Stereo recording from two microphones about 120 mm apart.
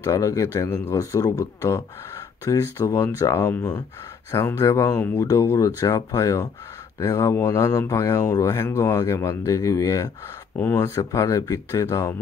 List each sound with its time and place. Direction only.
0.0 s speech: 30° left (ahead or behind)